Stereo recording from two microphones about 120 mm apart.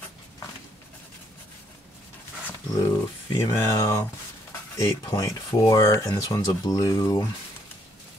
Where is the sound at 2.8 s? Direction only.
30° left (ahead or behind).